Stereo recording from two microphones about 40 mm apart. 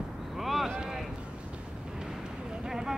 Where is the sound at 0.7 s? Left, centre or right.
Centre.